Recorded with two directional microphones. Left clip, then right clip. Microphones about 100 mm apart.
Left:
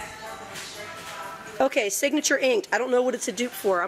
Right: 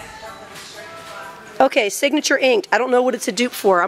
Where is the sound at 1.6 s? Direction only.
20° right (ahead or behind).